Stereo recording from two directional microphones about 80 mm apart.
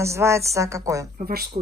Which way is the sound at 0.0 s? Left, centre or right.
Right.